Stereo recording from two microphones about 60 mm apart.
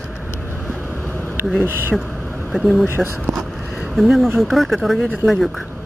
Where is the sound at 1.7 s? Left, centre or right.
Right.